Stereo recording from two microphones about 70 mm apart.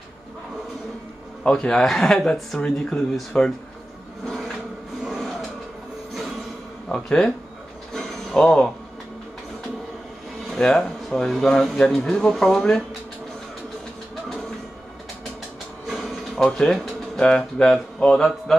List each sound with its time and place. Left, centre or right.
1.4 s speech: centre
5.0 s a sound: centre
6.9 s speech: centre
7.9 s mechanisms: centre
10.4 s speech: centre
15.9 s speech: centre